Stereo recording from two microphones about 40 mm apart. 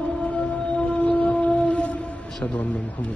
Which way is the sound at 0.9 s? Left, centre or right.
Left.